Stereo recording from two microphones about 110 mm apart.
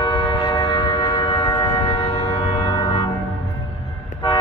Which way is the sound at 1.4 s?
25° left (ahead or behind).